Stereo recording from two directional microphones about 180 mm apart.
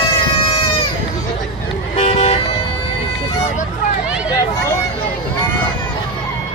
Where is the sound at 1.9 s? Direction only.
35° left (ahead or behind).